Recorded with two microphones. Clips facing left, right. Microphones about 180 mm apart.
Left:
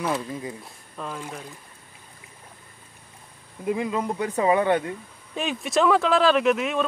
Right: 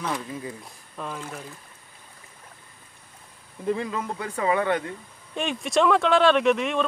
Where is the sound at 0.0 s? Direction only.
20° left (ahead or behind).